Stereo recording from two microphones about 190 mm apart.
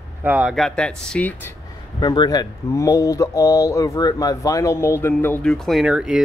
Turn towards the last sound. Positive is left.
turn(degrees=-5)  # may be behind; listen again after turning